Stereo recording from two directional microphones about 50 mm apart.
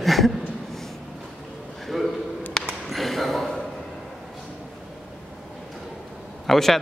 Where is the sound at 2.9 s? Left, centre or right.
Centre.